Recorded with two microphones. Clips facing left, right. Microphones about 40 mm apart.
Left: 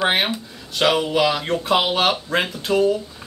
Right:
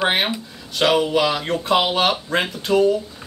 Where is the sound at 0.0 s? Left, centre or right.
Centre.